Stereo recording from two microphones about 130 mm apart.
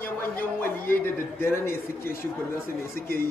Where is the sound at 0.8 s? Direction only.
15° left (ahead or behind).